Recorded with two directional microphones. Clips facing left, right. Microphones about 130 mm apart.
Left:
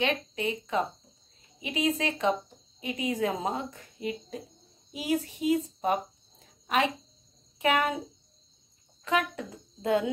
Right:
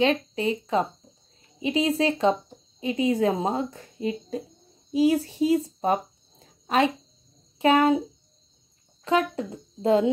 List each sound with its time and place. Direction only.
0.0 s a woman's voice: 30° right (ahead or behind)
6.4 s a sound: 30° right (ahead or behind)
7.5 s a child's voice: 30° right (ahead or behind)
9.0 s speech: 30° right (ahead or behind)